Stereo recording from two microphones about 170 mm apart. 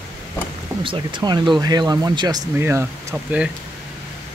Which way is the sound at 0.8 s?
30° right (ahead or behind).